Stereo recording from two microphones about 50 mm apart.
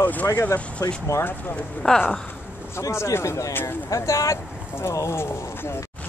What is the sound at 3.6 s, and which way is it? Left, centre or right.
Speech, left.